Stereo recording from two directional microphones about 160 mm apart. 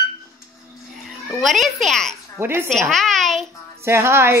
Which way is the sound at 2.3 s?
15° right (ahead or behind).